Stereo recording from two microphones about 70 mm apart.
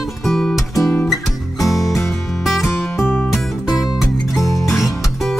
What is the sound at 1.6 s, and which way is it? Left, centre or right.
Music, centre.